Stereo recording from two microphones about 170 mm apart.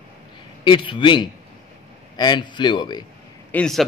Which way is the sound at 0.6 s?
30° left (ahead or behind).